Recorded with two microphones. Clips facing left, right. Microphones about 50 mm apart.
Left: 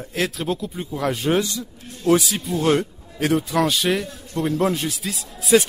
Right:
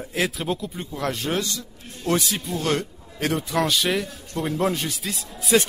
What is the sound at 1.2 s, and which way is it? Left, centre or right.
Speech, centre.